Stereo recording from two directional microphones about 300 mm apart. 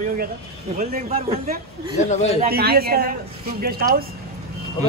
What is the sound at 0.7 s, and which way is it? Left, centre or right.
Speech, right.